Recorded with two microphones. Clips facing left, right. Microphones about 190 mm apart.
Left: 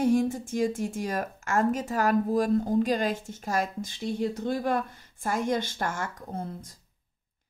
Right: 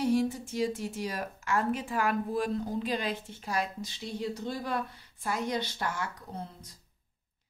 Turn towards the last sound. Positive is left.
turn(degrees=50)  # may be behind; listen again after turning